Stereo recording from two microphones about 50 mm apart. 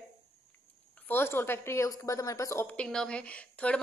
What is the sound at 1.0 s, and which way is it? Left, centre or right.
A woman's voice, left.